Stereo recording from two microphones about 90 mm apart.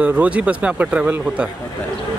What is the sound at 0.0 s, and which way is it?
Speech, 15° right (ahead or behind).